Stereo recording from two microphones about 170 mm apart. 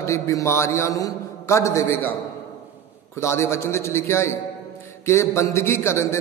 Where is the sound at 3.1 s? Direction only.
15° left (ahead or behind).